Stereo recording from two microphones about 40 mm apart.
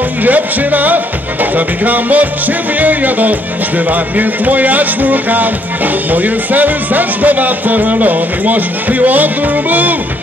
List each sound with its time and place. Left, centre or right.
0.2 s speech: right